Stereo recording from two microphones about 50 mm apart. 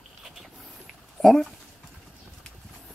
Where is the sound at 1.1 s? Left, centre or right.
Centre.